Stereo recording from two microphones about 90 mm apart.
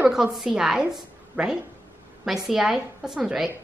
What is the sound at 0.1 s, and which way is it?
A woman's voice, 5° right (ahead or behind).